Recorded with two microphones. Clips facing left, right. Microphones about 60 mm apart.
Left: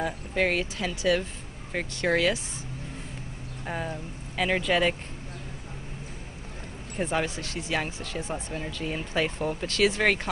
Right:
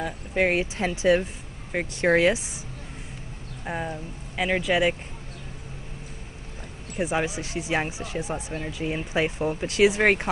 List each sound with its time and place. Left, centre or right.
0.3 s speech: centre
0.7 s speech: right
1.2 s speech: centre
2.0 s speech: right
3.6 s speech: centre
7.0 s speech: centre